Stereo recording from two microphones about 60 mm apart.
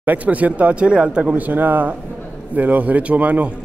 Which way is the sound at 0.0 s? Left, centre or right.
Right.